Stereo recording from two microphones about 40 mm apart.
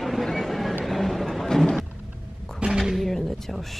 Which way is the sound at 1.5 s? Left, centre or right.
Centre.